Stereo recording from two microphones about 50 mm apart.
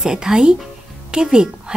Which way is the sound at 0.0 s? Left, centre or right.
Centre.